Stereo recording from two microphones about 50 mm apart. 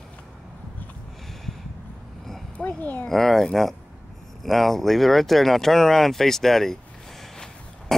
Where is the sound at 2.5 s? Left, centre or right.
Left.